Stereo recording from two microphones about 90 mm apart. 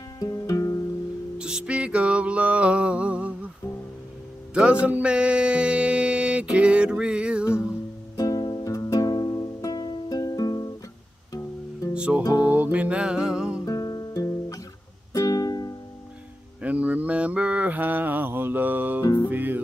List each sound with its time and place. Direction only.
0.2 s music: 40° left (ahead or behind)
1.4 s music: 10° right (ahead or behind)
4.8 s music: 15° right (ahead or behind)
8.2 s music: 45° left (ahead or behind)
11.9 s music: 10° right (ahead or behind)
12.2 s music: 40° left (ahead or behind)
12.4 s music: 15° right (ahead or behind)
13.7 s guitar: 45° left (ahead or behind)
15.1 s music: 40° left (ahead or behind)
16.6 s mantra: 15° right (ahead or behind)
19.2 s music: 20° right (ahead or behind)